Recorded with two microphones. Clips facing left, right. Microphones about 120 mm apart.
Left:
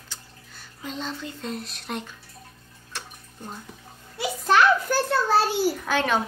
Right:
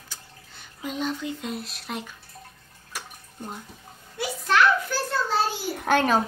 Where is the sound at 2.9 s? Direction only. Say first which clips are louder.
Right 1 dB; 10° right (ahead or behind).